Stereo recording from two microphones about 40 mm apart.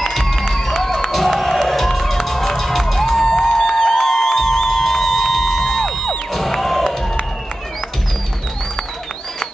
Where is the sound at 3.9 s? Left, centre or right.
Centre.